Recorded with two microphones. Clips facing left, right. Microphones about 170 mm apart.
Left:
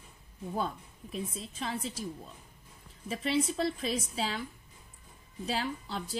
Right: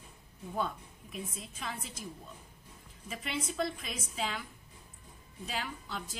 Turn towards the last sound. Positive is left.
turn(degrees=35)  # may be behind; listen again after turning